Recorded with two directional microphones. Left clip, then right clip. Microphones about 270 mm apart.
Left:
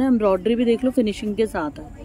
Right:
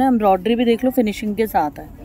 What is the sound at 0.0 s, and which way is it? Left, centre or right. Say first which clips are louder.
Speech: right 3 dB; centre.